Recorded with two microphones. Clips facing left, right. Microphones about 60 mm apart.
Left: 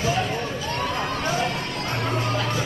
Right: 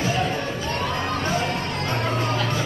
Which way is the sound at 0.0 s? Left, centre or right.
Right.